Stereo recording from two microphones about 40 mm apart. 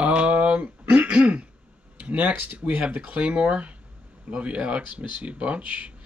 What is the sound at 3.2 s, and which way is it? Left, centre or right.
Speech, right.